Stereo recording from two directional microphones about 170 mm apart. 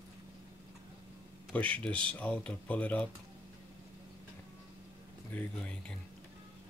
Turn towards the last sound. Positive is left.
turn(degrees=5)  # may be behind; listen again after turning